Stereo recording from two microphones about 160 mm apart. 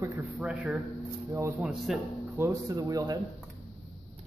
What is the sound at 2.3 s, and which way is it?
Speech, 20° right (ahead or behind).